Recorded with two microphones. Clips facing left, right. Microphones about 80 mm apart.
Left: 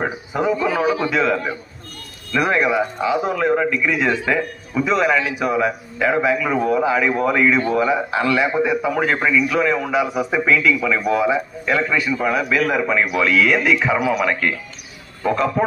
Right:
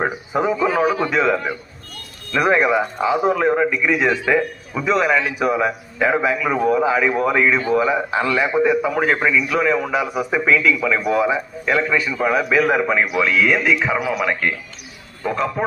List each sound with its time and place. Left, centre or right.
0.0 s a man's voice: centre
2.3 s a man's voice: centre
2.7 s a man's voice: centre
12.4 s a man's voice: centre
13.7 s a man's voice: centre
15.2 s speech: centre